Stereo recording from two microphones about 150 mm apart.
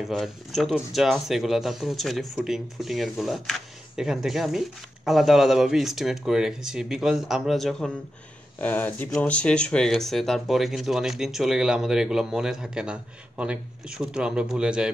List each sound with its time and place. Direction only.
0.0 s speech: centre (ahead or behind)